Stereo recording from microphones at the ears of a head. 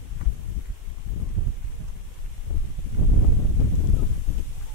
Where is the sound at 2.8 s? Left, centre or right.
Left.